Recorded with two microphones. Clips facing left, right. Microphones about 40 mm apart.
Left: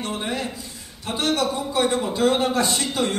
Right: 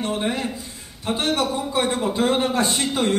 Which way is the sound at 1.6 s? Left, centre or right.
Right.